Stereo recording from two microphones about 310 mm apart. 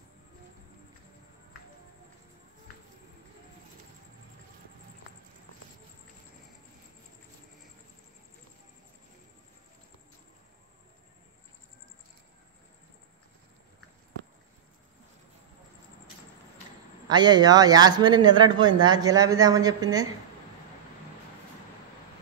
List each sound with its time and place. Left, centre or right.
17.1 s speech: centre